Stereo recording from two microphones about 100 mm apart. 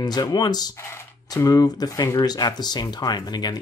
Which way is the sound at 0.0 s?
45° left (ahead or behind).